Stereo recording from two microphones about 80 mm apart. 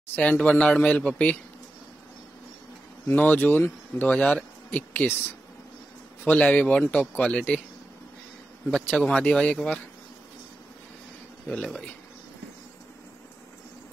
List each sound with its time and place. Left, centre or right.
0.1 s speech: centre
3.1 s speech: left
6.2 s speech: centre
8.6 s speech: centre
11.4 s speech: centre